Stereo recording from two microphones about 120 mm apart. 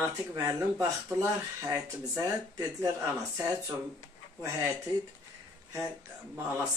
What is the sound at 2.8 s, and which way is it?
Speech, 25° right (ahead or behind).